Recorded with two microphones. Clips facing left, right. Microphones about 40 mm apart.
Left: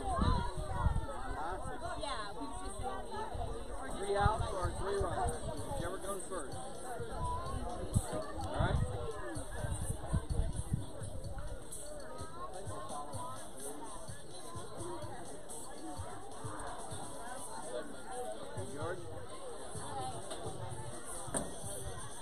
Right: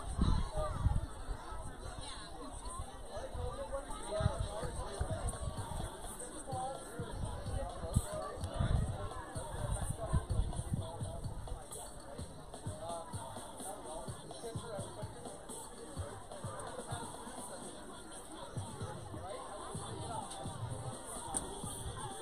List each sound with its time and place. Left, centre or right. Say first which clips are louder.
0.0 s a sound: left 5 dB; left
4.0 s chatter: left 9 dB; left
4.6 s speech: left 7 dB; left
5.8 s a sound: left 6 dB; left
8.5 s chatter: left 5 dB; left
20.1 s music: even; right